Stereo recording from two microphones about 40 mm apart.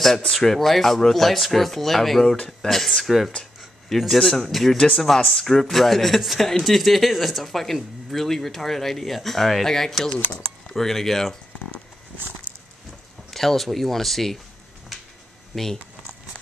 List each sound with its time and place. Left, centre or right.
0.3 s speech: centre
3.1 s speech: centre
4.2 s speech: centre
4.7 s speech: centre
5.3 s speech: centre
13.3 s speech: centre
15.5 s speech: centre